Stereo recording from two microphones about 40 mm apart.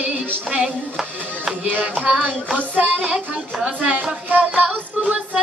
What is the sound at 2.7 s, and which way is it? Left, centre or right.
Music, right.